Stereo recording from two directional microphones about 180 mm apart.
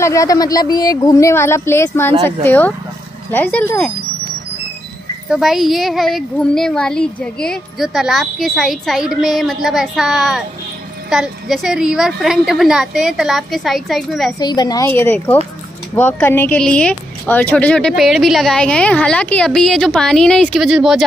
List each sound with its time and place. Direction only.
0.0 s speech: 20° left (ahead or behind)
5.3 s speech: centre (ahead or behind)
14.4 s a woman's voice: 25° left (ahead or behind)
14.9 s speech: 10° left (ahead or behind)